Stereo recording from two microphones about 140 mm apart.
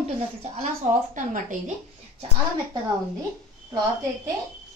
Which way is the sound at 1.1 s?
65° right (ahead or behind).